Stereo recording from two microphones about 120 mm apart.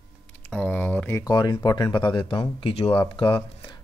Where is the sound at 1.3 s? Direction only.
35° left (ahead or behind).